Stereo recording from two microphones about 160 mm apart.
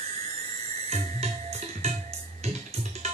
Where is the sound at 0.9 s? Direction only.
40° right (ahead or behind).